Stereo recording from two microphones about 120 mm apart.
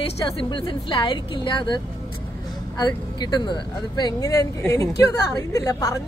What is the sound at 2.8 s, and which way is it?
A woman's voice, 35° left (ahead or behind).